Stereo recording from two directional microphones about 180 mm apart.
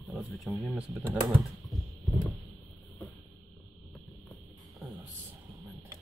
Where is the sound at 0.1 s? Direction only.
10° right (ahead or behind).